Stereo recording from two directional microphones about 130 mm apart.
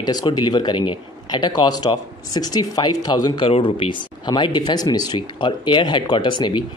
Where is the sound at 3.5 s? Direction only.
45° left (ahead or behind).